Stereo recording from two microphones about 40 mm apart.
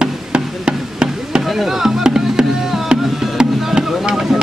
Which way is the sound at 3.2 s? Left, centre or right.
Centre.